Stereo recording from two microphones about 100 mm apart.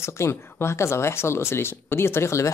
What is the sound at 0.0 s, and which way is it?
Speech, 25° left (ahead or behind).